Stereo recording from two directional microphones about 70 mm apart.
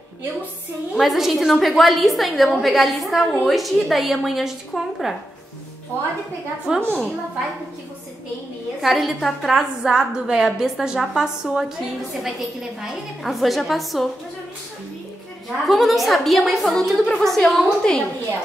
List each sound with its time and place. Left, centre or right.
0.9 s a woman's voice: centre
5.9 s a woman's voice: left
6.7 s a woman's voice: centre
8.8 s a woman's voice: centre
12.8 s a woman's voice: centre
15.7 s a woman's voice: centre